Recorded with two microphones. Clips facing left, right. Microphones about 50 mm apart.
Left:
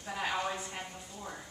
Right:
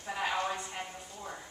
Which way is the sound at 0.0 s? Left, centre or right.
Centre.